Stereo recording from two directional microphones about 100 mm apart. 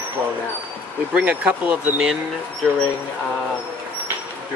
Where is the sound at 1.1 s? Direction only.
15° right (ahead or behind).